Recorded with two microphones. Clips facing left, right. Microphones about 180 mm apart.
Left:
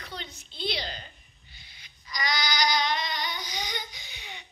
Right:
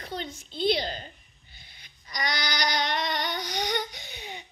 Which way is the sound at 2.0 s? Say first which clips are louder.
Even; 55° right (ahead or behind).